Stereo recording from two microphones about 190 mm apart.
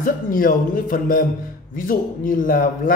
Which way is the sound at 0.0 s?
45° left (ahead or behind).